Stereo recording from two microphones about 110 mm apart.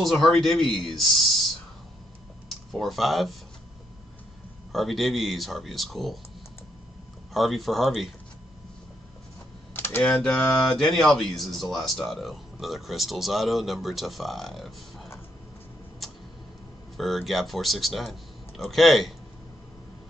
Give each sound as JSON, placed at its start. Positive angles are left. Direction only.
{"t": 0.0, "sound": "speech", "side_deg": 0}
{"t": 2.5, "sound": "speech", "side_deg": 0}
{"t": 4.7, "sound": "speech", "side_deg": 0}
{"t": 7.3, "sound": "speech", "side_deg": 0}
{"t": 9.8, "sound": "computer keyboard", "side_deg": 20}
{"t": 10.0, "sound": "speech", "side_deg": 5}
{"t": 16.0, "sound": "tick-tock", "side_deg": 0}
{"t": 16.9, "sound": "speech", "side_deg": 0}